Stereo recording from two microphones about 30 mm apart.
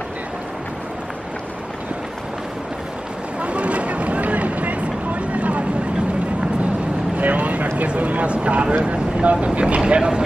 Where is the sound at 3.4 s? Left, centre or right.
Right.